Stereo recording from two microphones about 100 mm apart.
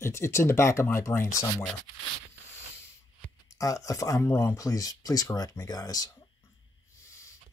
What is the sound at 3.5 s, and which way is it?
Speech, 35° left (ahead or behind).